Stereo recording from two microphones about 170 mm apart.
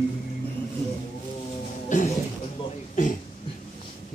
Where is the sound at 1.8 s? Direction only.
45° left (ahead or behind).